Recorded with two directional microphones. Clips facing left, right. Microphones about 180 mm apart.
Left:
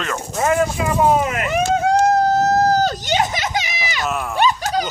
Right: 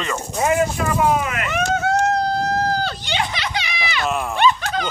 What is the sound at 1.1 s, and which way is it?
Vehicle, 40° left (ahead or behind).